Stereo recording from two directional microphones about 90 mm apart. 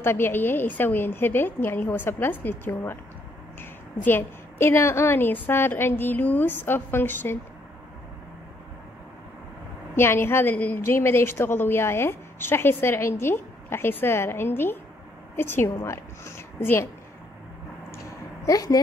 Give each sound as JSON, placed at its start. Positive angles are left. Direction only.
{"t": 0.0, "sound": "a woman's voice", "side_deg": 25}
{"t": 4.0, "sound": "a woman's voice", "side_deg": 25}
{"t": 9.9, "sound": "a woman's voice", "side_deg": 25}
{"t": 18.4, "sound": "speech", "side_deg": 40}